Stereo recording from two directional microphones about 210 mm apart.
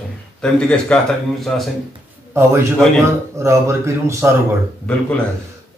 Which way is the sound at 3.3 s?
15° right (ahead or behind).